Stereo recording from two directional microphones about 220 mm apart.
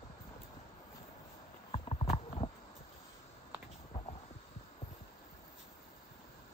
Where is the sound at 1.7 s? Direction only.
25° left (ahead or behind).